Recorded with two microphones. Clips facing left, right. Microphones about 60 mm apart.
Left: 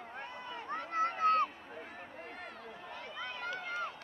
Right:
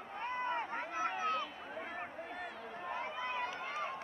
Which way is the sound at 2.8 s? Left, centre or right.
Right.